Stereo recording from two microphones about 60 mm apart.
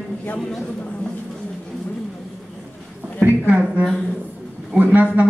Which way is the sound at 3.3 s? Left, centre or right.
Right.